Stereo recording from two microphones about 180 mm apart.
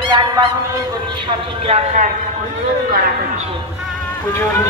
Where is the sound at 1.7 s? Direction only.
45° right (ahead or behind).